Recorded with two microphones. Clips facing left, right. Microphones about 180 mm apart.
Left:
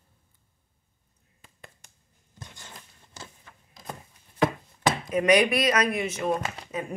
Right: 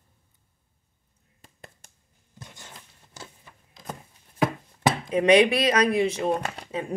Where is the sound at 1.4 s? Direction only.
40° right (ahead or behind).